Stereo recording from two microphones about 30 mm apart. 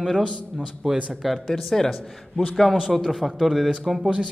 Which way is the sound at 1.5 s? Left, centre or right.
Centre.